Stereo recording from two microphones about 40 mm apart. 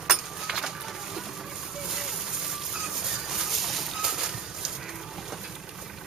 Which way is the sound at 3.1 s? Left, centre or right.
Centre.